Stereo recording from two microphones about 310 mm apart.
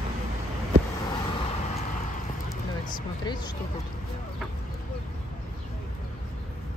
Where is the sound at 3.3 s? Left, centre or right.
Centre.